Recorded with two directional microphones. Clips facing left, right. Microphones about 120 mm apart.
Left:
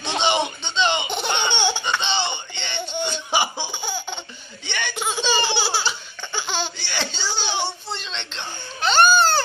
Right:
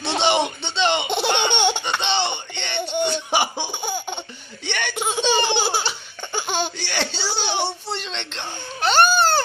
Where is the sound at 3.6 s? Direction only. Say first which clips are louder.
Right 2 dB; 55° right (ahead or behind).